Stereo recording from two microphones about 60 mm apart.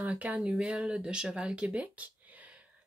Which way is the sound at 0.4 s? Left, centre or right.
Centre.